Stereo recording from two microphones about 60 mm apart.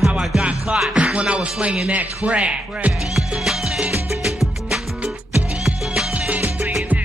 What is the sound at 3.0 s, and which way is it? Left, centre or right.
Music, centre.